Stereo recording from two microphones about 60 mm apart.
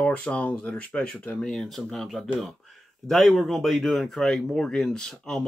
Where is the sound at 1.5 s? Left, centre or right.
Centre.